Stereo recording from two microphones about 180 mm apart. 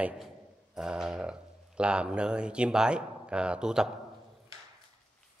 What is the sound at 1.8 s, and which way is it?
A man's voice, 5° right (ahead or behind).